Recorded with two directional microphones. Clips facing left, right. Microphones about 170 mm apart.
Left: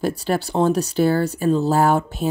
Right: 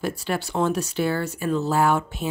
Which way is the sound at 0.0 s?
35° left (ahead or behind).